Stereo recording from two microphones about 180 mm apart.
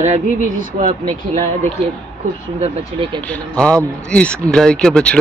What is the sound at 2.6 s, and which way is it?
Speech, 30° right (ahead or behind).